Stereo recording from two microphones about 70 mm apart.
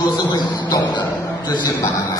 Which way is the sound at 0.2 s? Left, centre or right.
Left.